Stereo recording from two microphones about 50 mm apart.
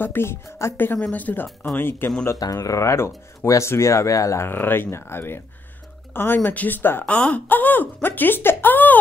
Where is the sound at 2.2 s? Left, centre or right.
Left.